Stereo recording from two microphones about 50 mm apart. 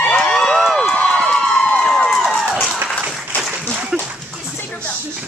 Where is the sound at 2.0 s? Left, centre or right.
Centre.